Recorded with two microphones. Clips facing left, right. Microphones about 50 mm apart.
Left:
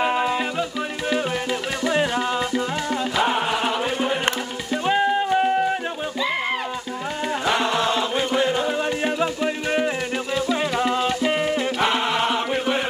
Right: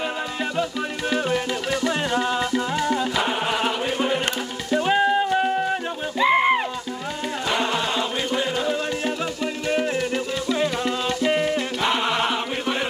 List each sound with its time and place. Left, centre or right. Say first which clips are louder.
1.1 s music: right 1 dB; centre
6.1 s music: right 8 dB; right
8.5 s music: left 2 dB; centre